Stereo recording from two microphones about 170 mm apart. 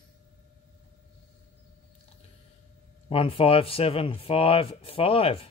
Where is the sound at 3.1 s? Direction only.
30° left (ahead or behind).